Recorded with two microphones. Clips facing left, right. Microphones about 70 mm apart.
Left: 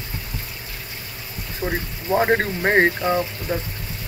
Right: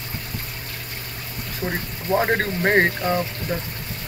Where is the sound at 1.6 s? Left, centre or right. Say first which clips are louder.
Left 2 dB; centre.